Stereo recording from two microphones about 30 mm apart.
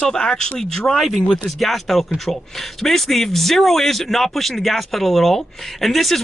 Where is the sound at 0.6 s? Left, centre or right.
Centre.